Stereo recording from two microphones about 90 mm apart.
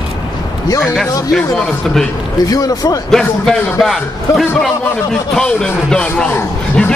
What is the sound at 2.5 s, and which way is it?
Speech, 45° left (ahead or behind).